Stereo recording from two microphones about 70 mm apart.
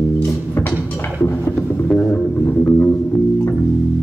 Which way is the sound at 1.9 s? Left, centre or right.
Left.